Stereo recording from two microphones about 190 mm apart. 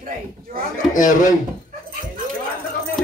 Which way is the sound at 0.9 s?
45° left (ahead or behind).